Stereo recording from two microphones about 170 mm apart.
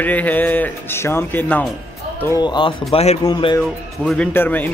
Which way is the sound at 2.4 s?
25° left (ahead or behind).